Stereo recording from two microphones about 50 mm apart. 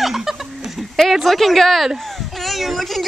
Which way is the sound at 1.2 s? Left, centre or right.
Centre.